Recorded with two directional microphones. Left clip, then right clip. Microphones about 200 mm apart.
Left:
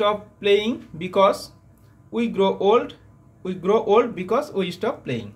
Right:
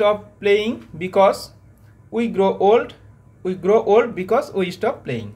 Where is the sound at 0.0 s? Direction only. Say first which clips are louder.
Right 3 dB; centre (ahead or behind).